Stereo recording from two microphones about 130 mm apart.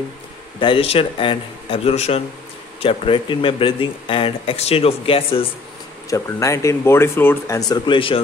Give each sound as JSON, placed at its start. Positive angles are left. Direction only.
{"t": 0.6, "sound": "speech", "side_deg": 45}
{"t": 6.0, "sound": "speech", "side_deg": 25}